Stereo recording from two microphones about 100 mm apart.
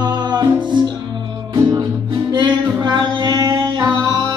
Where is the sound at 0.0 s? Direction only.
45° right (ahead or behind).